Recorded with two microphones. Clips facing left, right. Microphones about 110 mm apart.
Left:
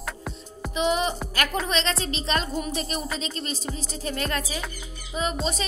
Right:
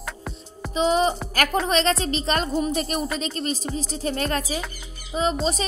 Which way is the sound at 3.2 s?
45° right (ahead or behind).